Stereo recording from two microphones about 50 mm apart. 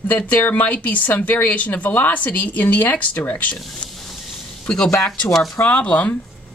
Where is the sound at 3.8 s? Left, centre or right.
Left.